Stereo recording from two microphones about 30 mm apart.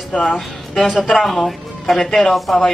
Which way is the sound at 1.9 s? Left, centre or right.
Left.